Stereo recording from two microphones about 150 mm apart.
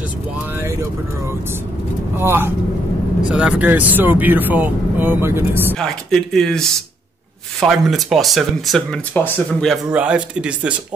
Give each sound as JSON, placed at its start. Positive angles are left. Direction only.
{"t": 0.6, "sound": "vehicle", "side_deg": -20}
{"t": 2.1, "sound": "speech", "side_deg": -15}
{"t": 3.2, "sound": "speech", "side_deg": -5}
{"t": 5.8, "sound": "speech", "side_deg": 5}
{"t": 7.6, "sound": "speech", "side_deg": 0}
{"t": 9.7, "sound": "speech", "side_deg": -5}